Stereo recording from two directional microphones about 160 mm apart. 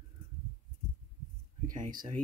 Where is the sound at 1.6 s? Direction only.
55° right (ahead or behind).